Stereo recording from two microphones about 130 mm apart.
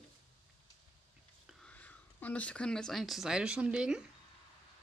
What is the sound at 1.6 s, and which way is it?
Speech, 10° left (ahead or behind).